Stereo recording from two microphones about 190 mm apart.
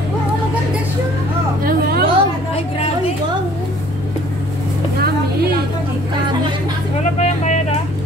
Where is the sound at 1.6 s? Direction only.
50° right (ahead or behind).